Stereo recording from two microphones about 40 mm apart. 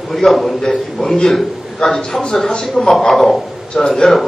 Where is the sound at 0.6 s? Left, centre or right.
Centre.